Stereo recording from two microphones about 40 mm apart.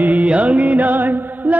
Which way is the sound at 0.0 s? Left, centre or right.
Right.